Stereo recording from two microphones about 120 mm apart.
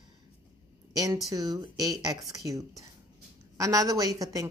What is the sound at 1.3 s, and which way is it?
A woman's voice, 30° right (ahead or behind).